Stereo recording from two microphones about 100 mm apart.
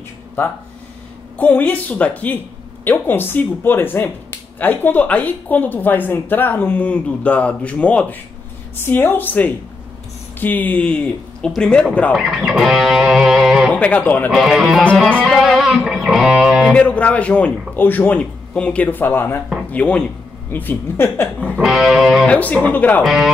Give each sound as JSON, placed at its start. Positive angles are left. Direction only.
{"t": 1.4, "sound": "a woman's voice", "side_deg": 15}
{"t": 12.1, "sound": "speech", "side_deg": -5}
{"t": 13.7, "sound": "speech", "side_deg": 15}
{"t": 14.3, "sound": "speech", "side_deg": 0}
{"t": 16.7, "sound": "a woman's voice", "side_deg": 15}
{"t": 21.5, "sound": "speech", "side_deg": -5}
{"t": 22.3, "sound": "speech", "side_deg": 15}
{"t": 23.0, "sound": "speech", "side_deg": -5}